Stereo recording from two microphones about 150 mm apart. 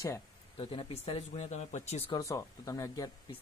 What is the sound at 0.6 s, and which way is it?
Speech, 40° left (ahead or behind).